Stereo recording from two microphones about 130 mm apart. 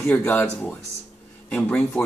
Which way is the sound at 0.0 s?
10° left (ahead or behind).